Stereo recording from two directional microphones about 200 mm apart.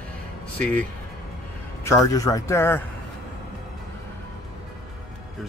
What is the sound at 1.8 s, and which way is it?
Speech, 15° left (ahead or behind).